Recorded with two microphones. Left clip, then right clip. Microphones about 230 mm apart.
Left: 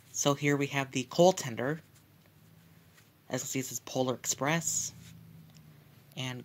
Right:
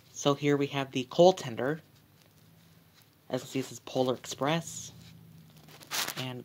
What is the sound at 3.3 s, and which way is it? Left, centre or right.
Speech, left.